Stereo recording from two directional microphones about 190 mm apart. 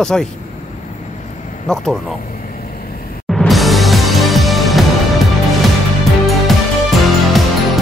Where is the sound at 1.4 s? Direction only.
40° left (ahead or behind).